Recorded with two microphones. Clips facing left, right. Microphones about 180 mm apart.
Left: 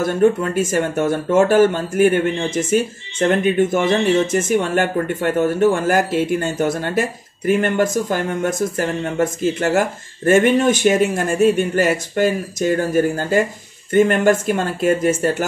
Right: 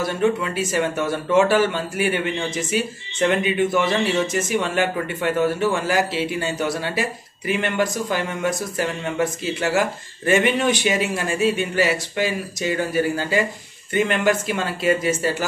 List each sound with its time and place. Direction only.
0.0 s speech: 50° left (ahead or behind)